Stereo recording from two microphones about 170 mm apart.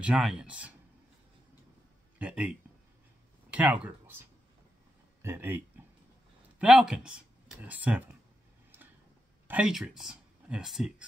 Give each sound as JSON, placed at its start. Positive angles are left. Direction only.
{"t": 0.0, "sound": "speech", "side_deg": -5}
{"t": 2.1, "sound": "speech", "side_deg": -10}
{"t": 5.2, "sound": "speech", "side_deg": -15}
{"t": 6.6, "sound": "speech", "side_deg": -5}
{"t": 9.5, "sound": "speech", "side_deg": -5}